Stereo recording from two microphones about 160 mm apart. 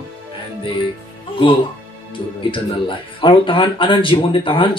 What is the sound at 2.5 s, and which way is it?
Speech, 30° left (ahead or behind).